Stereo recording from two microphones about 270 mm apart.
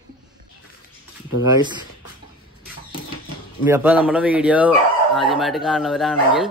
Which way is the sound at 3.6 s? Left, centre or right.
Centre.